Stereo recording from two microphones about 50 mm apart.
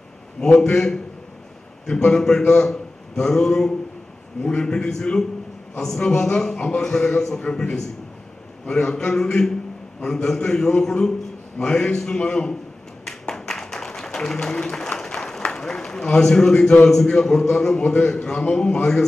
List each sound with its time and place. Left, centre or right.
0.4 s a man's voice: centre
2.0 s a man's voice: centre
2.6 s a sound: centre
4.4 s a man's voice: centre
13.2 s a sound: centre
16.8 s a man's voice: centre